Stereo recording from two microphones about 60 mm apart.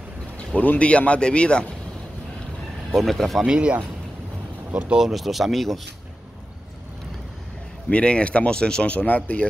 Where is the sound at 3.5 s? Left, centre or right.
Centre.